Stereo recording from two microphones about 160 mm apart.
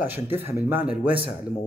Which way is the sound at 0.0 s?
15° right (ahead or behind).